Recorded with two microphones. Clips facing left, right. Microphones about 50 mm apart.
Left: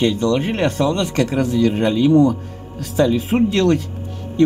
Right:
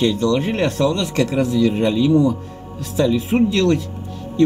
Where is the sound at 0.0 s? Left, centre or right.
Left.